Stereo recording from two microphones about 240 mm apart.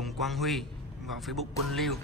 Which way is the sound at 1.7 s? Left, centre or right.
Centre.